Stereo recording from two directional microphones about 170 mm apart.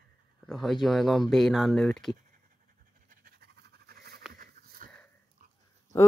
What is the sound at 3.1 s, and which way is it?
Pant, 65° right (ahead or behind).